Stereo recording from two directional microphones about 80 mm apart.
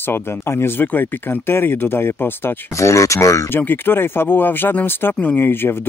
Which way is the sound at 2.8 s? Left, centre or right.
Left.